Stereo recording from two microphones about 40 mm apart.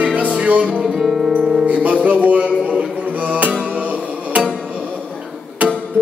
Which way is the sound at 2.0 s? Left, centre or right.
Right.